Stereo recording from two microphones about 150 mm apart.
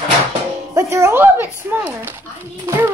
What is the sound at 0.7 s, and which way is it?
A child's voice, 20° right (ahead or behind).